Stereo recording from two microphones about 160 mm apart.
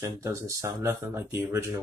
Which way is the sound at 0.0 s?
20° right (ahead or behind).